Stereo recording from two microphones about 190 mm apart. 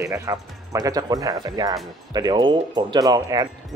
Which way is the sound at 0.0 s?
15° right (ahead or behind).